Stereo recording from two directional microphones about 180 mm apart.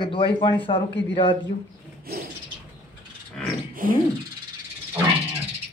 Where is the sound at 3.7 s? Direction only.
50° right (ahead or behind).